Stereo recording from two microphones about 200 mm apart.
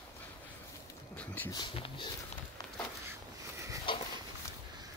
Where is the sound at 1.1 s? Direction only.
10° left (ahead or behind).